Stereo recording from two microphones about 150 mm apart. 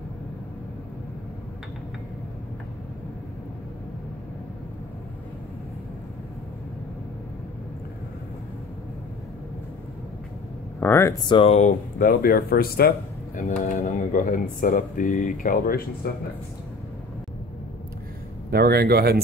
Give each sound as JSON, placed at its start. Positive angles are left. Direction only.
{"t": 10.8, "sound": "a sound", "side_deg": 15}
{"t": 11.2, "sound": "speech", "side_deg": 35}
{"t": 12.0, "sound": "speech", "side_deg": 75}
{"t": 13.4, "sound": "speech", "side_deg": 55}
{"t": 18.5, "sound": "speech", "side_deg": -90}